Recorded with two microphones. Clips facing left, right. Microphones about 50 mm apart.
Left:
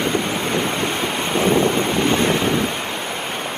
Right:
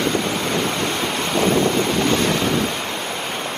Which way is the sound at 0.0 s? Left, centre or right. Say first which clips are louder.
Even; centre.